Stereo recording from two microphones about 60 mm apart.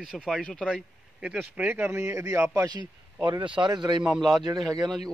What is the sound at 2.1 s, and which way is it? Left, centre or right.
Speech, right.